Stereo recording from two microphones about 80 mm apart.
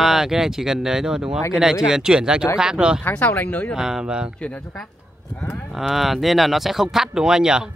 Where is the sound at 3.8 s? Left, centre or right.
Centre.